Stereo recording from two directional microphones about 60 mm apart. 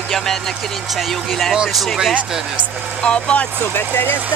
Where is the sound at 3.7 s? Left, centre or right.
Left.